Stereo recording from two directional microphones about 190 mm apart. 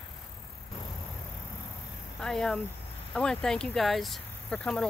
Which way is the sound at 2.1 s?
5° left (ahead or behind).